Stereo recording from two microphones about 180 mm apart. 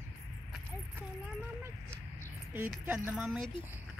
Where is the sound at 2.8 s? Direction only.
10° right (ahead or behind).